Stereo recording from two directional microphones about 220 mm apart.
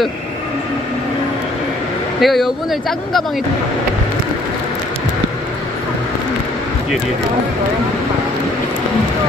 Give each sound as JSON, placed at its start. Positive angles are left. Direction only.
{"t": 2.2, "sound": "speech", "side_deg": 0}